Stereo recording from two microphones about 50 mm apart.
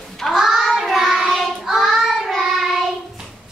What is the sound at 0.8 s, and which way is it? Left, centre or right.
Child singing, centre.